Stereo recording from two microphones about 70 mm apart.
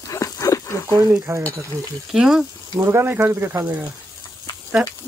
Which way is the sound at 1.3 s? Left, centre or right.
Right.